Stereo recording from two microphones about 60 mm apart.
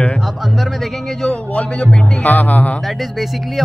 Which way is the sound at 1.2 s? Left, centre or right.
Centre.